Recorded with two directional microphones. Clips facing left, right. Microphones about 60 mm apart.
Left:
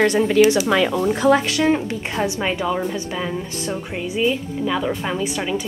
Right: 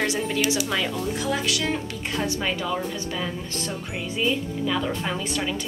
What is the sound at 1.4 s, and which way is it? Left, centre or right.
Speech, left.